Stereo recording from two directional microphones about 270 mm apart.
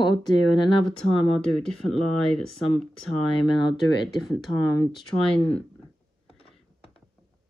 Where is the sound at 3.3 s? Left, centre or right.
Centre.